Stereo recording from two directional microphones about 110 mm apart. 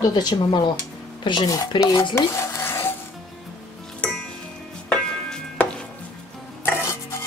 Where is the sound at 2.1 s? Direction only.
25° left (ahead or behind).